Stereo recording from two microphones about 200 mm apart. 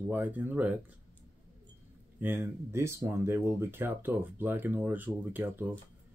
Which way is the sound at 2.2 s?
10° right (ahead or behind).